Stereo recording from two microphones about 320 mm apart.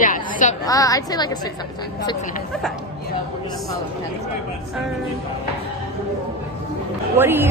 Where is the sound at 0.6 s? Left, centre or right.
Centre.